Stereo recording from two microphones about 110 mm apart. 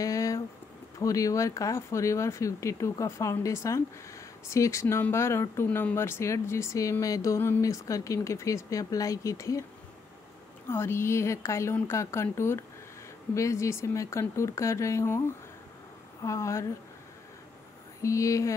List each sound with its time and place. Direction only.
0.0 s a sound: 30° left (ahead or behind)
0.9 s speech: 30° left (ahead or behind)
10.7 s speech: 25° left (ahead or behind)
18.0 s speech: 30° left (ahead or behind)